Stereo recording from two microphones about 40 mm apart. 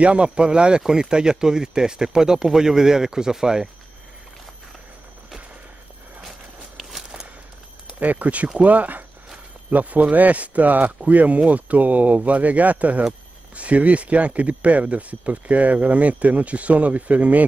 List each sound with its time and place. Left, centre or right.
0.0 s speech: right
7.0 s a sound: centre
8.0 s speech: right